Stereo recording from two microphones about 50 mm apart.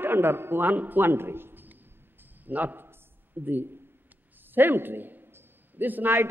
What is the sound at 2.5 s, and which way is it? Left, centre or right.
A man's voice, right.